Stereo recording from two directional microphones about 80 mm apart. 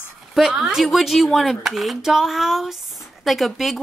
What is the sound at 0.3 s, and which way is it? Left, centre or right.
Speech, centre.